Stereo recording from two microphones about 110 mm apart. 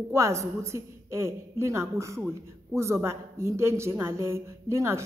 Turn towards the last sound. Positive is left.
turn(degrees=-25)  # may be behind; listen again after turning